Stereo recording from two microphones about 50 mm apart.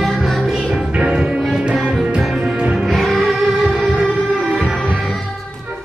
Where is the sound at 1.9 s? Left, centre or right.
Centre.